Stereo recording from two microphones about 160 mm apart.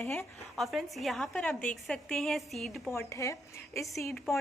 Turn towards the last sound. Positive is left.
turn(degrees=5)  # may be behind; listen again after turning